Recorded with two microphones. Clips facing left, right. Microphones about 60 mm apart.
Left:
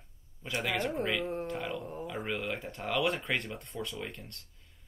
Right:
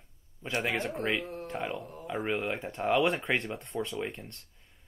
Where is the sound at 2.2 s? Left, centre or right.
Right.